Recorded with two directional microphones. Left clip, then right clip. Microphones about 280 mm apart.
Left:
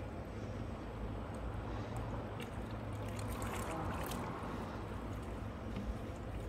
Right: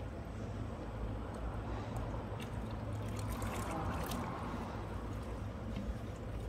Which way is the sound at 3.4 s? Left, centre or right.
Right.